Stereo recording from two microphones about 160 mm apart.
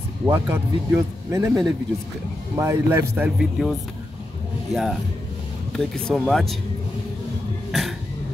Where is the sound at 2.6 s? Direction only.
15° right (ahead or behind).